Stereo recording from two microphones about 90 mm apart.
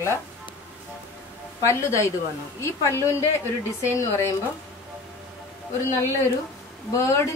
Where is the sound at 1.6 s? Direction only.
35° left (ahead or behind).